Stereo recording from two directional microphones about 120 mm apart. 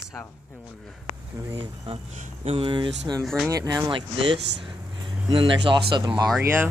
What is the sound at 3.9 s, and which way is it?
Speech, 45° right (ahead or behind).